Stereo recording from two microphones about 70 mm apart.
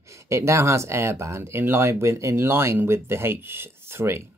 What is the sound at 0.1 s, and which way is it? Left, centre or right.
Speech, right.